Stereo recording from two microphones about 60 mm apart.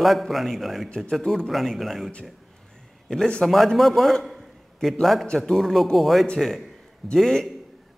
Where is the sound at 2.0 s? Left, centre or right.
Centre.